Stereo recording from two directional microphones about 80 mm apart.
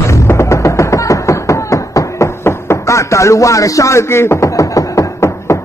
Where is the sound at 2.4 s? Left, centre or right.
Left.